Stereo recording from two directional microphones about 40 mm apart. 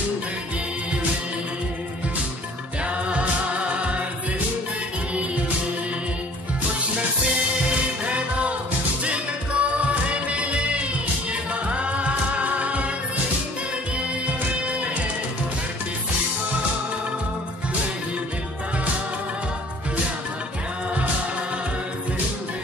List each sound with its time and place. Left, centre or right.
2.8 s music: right
8.0 s music: right
14.7 s music: right